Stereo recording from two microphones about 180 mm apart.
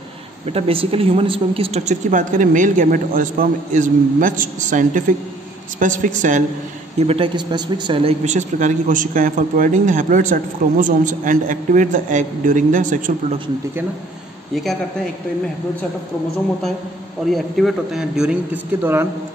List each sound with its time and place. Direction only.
0.5 s a man's voice: 30° right (ahead or behind)
7.0 s a man's voice: 30° right (ahead or behind)
14.5 s a man's voice: centre (ahead or behind)
17.3 s a man's voice: centre (ahead or behind)